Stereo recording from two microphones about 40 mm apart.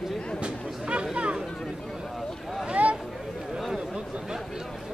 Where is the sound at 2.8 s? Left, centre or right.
Right.